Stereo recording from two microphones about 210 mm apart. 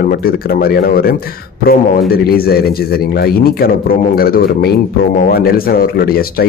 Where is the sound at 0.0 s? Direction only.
45° left (ahead or behind).